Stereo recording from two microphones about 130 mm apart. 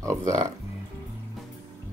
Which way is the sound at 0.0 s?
25° right (ahead or behind).